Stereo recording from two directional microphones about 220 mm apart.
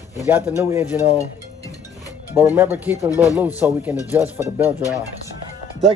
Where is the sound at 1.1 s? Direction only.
15° left (ahead or behind).